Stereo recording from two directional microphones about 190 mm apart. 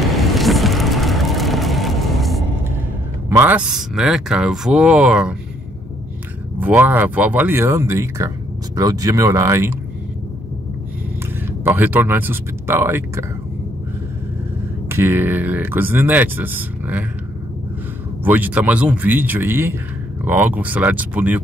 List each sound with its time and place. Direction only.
0.1 s vehicle: centre (ahead or behind)
3.3 s speech: 10° right (ahead or behind)
6.6 s speech: 10° right (ahead or behind)
11.6 s speech: 10° right (ahead or behind)
14.9 s speech: 10° right (ahead or behind)
18.2 s speech: 10° right (ahead or behind)